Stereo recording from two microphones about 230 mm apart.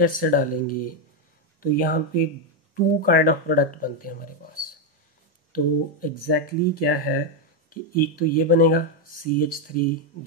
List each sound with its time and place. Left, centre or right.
0.0 s speech: left
5.5 s speech: left